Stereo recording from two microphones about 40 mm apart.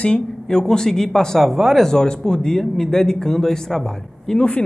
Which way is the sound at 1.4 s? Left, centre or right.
Centre.